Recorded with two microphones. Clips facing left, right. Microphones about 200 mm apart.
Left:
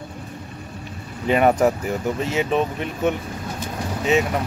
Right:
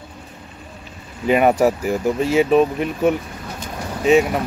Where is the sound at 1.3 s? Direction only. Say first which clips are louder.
Right 2 dB; 10° right (ahead or behind).